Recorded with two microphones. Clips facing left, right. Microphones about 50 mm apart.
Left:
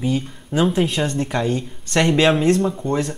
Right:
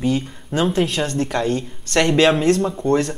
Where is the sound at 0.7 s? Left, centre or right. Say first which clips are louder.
Even; centre.